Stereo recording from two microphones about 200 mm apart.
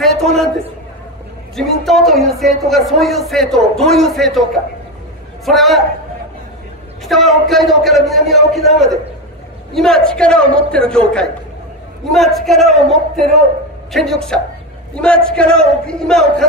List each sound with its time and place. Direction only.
0.0 s a sound: centre (ahead or behind)
1.9 s speech: centre (ahead or behind)
7.1 s speech: centre (ahead or behind)